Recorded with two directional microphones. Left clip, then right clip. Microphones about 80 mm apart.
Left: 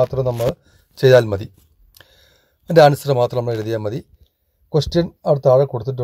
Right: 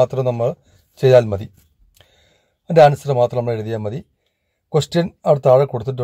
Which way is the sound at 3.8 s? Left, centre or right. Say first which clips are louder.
Left 2 dB; centre.